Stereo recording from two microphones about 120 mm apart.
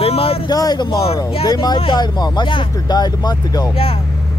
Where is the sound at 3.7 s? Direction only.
50° left (ahead or behind).